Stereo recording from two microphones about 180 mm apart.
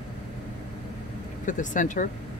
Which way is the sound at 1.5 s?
45° left (ahead or behind).